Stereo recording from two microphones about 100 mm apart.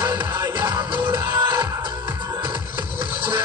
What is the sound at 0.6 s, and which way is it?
Music, 50° right (ahead or behind).